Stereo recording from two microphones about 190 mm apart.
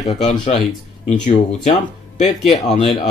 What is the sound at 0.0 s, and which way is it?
Speech, 35° left (ahead or behind).